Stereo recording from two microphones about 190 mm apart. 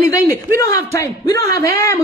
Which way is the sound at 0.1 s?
15° left (ahead or behind).